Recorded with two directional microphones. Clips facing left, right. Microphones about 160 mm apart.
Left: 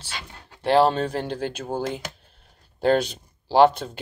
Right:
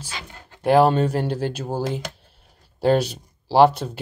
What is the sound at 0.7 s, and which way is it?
Speech, 10° right (ahead or behind).